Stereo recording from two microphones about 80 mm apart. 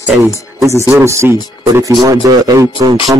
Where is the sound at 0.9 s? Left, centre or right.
Right.